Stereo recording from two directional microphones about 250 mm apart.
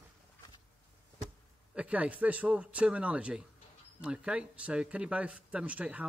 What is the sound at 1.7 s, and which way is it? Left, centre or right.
Speech, centre.